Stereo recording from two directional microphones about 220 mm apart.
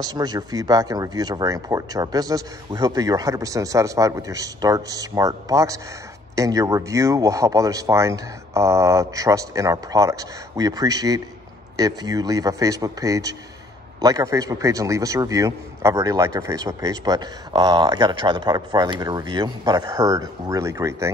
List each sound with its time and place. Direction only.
0.0 s a man's voice: 15° right (ahead or behind)